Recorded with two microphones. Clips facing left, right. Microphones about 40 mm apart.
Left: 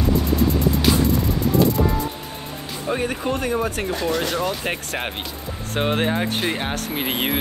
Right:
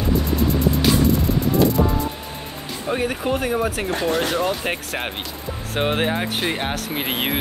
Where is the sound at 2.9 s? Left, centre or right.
Centre.